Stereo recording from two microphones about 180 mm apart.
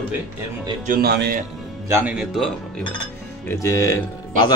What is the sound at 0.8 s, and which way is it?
Speech, 55° right (ahead or behind).